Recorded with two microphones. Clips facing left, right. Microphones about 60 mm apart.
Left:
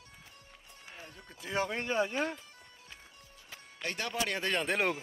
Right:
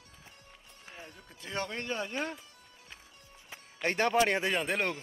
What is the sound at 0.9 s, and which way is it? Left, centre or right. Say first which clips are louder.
Speech: right 1 dB; centre.